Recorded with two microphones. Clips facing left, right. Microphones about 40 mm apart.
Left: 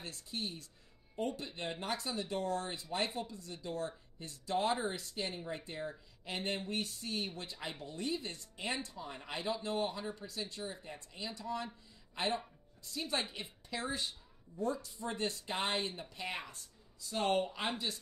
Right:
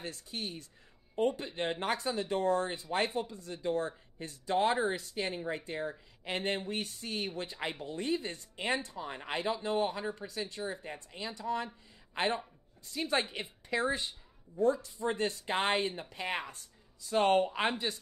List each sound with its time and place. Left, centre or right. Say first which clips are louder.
0.0 s speech: right 2 dB; right